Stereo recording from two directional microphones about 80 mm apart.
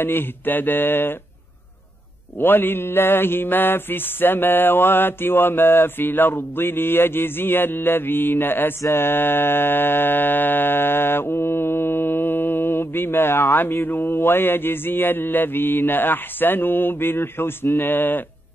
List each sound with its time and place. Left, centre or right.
0.0 s mantra: left
2.3 s mantra: left